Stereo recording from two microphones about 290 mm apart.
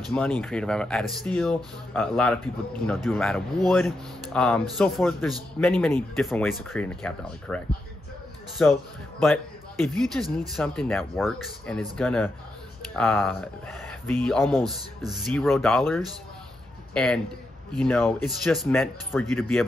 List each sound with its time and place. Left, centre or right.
0.1 s speech: centre
9.2 s a man's voice: centre